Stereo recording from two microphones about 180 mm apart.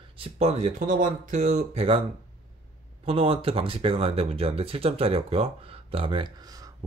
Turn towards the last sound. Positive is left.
turn(degrees=-20)  # may be behind; listen again after turning